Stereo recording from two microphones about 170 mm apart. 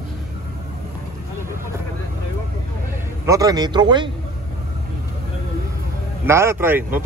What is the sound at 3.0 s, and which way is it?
A man's voice, 20° right (ahead or behind).